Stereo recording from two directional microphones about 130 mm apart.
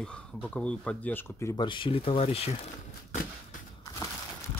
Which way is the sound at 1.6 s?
40° left (ahead or behind).